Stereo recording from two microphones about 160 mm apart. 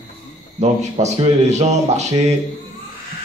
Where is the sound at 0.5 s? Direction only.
45° right (ahead or behind).